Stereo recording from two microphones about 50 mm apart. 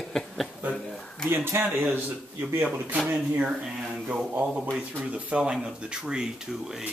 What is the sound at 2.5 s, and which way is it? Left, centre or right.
Speech, right.